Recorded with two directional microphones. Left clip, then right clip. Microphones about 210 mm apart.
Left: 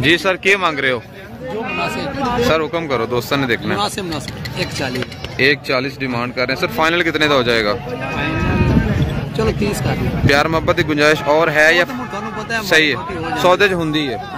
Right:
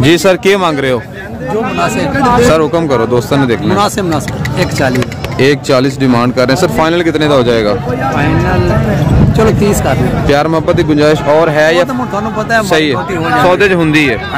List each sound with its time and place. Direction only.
0.0 s a man's voice: 20° right (ahead or behind)
6.8 s speech: 10° right (ahead or behind)
10.2 s speech: 10° right (ahead or behind)
13.4 s speech: centre (ahead or behind)